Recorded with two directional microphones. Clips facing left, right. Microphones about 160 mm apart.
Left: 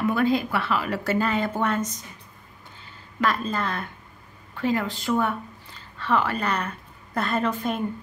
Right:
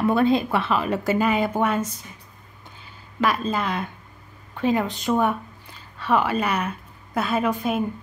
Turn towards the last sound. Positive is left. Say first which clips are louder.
# right 3 dB
turn(degrees=-10)  # may be behind; listen again after turning